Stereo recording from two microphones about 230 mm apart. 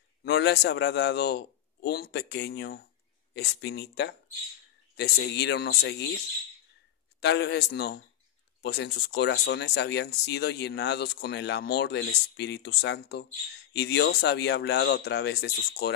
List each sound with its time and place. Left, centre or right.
0.2 s a man's voice: left
7.2 s speech: left